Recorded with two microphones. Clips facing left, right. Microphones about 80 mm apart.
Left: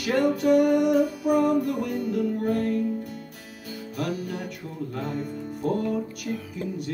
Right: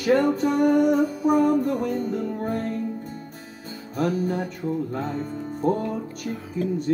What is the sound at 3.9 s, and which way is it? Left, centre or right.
Music, right.